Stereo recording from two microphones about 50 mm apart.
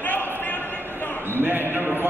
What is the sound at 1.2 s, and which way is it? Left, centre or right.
Basketball bounce, right.